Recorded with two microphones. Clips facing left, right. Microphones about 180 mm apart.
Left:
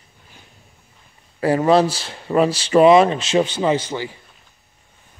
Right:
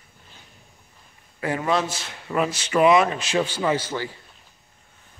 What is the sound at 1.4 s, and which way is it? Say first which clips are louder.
Speech: left 9 dB; 35° left (ahead or behind).